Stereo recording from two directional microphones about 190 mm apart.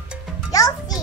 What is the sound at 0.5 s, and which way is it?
Speech, 20° left (ahead or behind).